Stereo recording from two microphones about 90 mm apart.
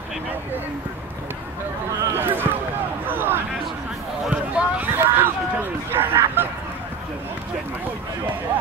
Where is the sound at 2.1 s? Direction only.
25° right (ahead or behind).